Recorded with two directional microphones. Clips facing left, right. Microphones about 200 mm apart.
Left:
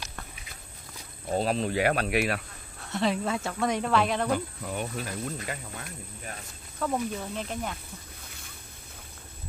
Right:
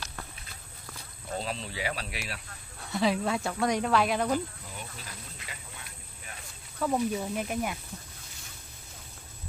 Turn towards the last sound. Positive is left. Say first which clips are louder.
# right 2 dB
turn(degrees=-10)  # may be behind; listen again after turning